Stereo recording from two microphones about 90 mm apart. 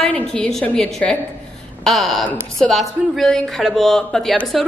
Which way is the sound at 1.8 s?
Centre (ahead or behind).